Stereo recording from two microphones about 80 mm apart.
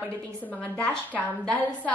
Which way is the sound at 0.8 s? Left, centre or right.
Centre.